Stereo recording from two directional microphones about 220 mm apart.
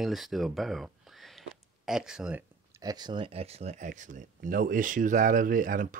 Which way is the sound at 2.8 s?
20° right (ahead or behind).